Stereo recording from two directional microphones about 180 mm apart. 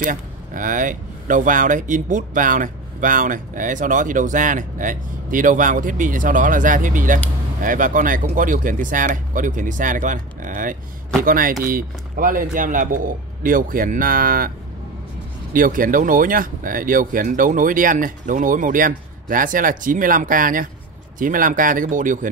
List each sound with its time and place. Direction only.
0.0 s speech: 45° right (ahead or behind)
15.5 s speech: 50° right (ahead or behind)